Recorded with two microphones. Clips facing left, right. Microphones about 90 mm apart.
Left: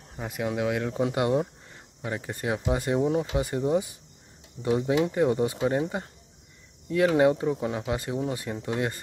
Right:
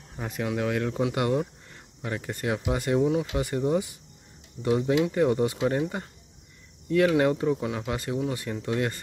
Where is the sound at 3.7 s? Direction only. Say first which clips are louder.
Even; 20° left (ahead or behind).